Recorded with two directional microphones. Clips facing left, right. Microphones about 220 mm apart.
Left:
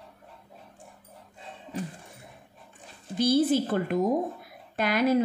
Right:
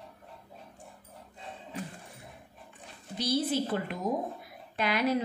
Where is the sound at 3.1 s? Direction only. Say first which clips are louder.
Left 7 dB; 50° left (ahead or behind).